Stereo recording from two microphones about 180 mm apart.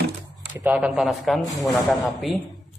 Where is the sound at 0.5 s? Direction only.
10° right (ahead or behind).